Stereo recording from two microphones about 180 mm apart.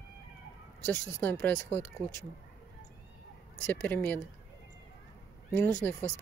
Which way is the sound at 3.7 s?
10° left (ahead or behind).